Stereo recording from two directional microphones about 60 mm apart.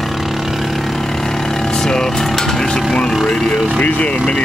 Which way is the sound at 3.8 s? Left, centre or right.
Left.